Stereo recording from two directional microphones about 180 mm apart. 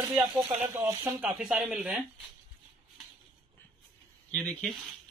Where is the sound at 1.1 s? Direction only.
5° right (ahead or behind).